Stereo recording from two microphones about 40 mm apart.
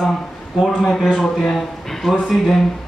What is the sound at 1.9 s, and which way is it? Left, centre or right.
Speech, centre.